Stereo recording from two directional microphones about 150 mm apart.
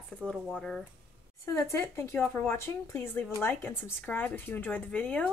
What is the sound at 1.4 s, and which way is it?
Speech, 20° left (ahead or behind).